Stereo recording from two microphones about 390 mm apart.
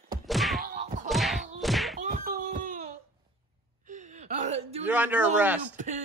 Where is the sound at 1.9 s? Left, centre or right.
Right.